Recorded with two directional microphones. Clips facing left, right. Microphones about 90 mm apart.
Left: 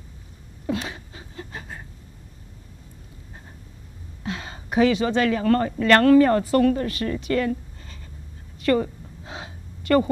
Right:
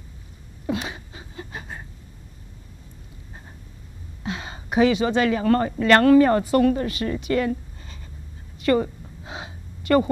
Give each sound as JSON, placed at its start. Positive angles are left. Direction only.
{"t": 0.7, "sound": "a sound", "side_deg": -20}
{"t": 4.2, "sound": "speech", "side_deg": -20}
{"t": 8.5, "sound": "gasp", "side_deg": -20}